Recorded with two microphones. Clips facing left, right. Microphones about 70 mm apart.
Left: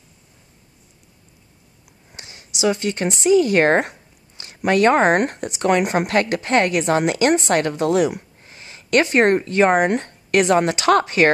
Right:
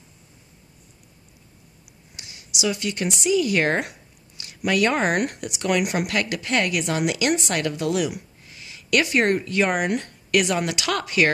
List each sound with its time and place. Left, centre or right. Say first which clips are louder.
2.1 s speech: left 1 dB; left